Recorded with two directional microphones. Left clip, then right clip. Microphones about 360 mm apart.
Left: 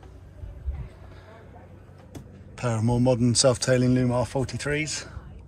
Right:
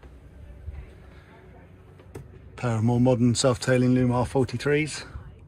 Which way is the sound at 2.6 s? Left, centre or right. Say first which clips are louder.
Right 1 dB; centre.